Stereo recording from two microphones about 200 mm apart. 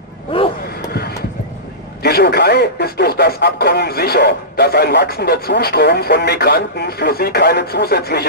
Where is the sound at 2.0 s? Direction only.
50° left (ahead or behind).